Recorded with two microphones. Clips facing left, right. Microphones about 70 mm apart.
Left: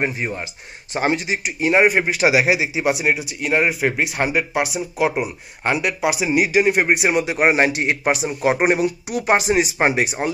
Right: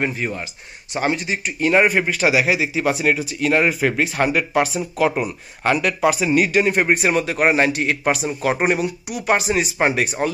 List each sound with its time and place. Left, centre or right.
0.0 s speech: left